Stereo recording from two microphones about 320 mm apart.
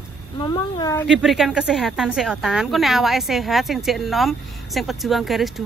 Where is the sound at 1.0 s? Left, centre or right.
Centre.